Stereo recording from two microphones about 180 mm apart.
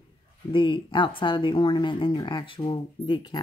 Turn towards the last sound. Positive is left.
turn(degrees=25)  # may be behind; listen again after turning